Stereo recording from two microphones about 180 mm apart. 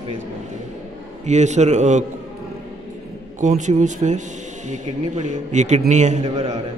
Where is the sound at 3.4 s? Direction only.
40° right (ahead or behind).